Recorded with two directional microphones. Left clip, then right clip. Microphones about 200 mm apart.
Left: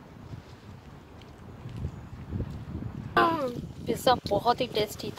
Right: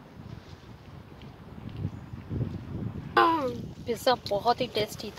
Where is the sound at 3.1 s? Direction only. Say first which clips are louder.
Right 2 dB; 40° right (ahead or behind).